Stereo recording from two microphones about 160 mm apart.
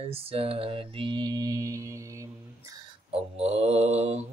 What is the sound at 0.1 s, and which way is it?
Mantra, 35° right (ahead or behind).